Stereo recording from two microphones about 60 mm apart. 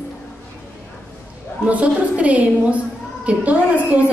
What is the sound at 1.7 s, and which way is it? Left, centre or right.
A woman's voice, right.